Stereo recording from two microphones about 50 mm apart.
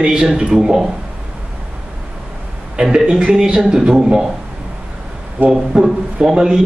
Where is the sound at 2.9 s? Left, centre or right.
Centre.